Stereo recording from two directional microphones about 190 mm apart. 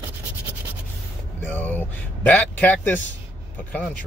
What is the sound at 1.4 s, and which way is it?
Speech, 10° left (ahead or behind).